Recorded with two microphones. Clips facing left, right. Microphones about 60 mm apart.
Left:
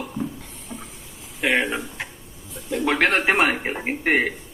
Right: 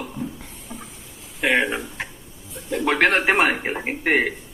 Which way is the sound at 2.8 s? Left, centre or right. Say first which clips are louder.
Right 1 dB; right.